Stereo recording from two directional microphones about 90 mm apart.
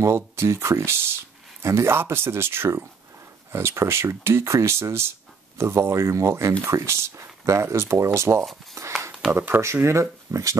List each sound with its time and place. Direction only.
0.0 s speech: 30° right (ahead or behind)
8.8 s a sound: 35° right (ahead or behind)
9.3 s speech: 20° right (ahead or behind)